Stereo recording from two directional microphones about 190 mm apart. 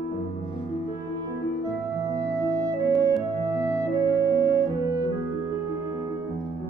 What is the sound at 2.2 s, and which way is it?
Music, 20° right (ahead or behind).